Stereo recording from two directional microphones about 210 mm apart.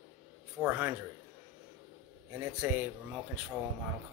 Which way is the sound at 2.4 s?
10° right (ahead or behind).